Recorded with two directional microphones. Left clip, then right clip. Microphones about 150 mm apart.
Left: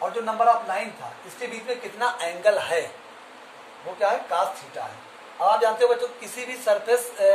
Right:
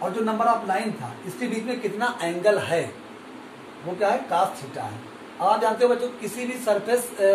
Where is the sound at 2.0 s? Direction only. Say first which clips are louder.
Left 2 dB; 35° left (ahead or behind).